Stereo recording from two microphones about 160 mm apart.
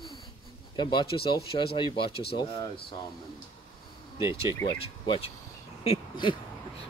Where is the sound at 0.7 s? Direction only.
30° left (ahead or behind).